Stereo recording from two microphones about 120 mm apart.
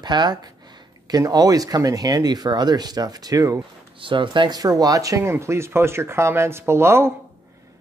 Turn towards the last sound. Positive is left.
turn(degrees=-20)  # may be behind; listen again after turning